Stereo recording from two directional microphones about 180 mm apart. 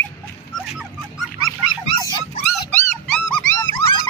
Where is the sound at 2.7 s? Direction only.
5° left (ahead or behind).